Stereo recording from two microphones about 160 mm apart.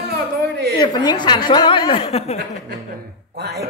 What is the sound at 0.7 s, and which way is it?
A woman's voice, 25° left (ahead or behind).